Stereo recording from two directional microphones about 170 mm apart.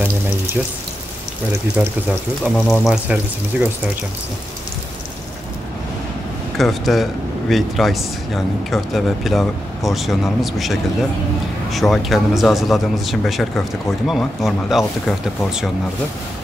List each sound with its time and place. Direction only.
1.8 s speech: 10° right (ahead or behind)
2.5 s speech: 5° left (ahead or behind)
2.9 s speech: 5° right (ahead or behind)
6.6 s speech: centre (ahead or behind)